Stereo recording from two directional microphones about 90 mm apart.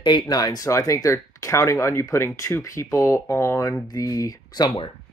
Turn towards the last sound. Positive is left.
turn(degrees=45)  # may be behind; listen again after turning